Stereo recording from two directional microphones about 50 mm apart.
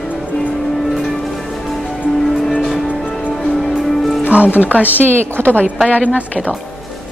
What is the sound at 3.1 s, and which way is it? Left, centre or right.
Music, left.